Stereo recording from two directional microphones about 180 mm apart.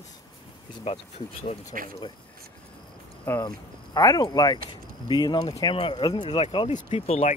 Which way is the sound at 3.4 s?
20° left (ahead or behind).